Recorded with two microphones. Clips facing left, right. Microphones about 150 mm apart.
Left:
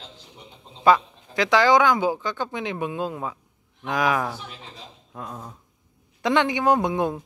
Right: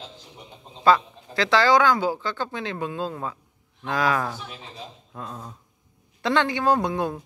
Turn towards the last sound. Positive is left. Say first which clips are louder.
# left 1 dB
turn(degrees=20)  # may be behind; listen again after turning